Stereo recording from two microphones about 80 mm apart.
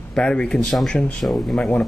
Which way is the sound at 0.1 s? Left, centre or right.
Centre.